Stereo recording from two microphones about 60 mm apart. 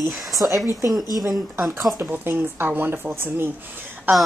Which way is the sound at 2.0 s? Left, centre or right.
Right.